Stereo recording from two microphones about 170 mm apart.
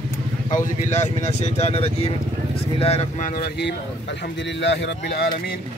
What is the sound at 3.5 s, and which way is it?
Speech, 90° left.